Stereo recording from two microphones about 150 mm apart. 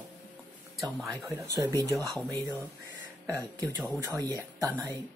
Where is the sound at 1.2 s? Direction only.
20° right (ahead or behind).